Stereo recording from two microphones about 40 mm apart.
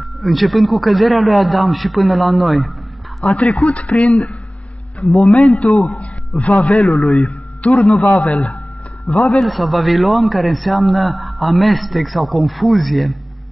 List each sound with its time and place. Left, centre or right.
0.0 s a man's voice: centre
3.3 s a man's voice: left
5.0 s a man's voice: centre
5.6 s a man's voice: left
6.7 s a man's voice: left
8.1 s a man's voice: left
9.2 s speech: centre
9.5 s a man's voice: centre